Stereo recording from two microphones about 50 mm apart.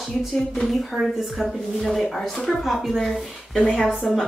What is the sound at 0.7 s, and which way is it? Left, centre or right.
A woman's voice, centre.